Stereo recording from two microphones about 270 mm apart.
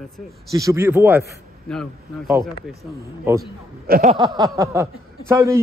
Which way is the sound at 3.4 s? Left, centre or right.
Right.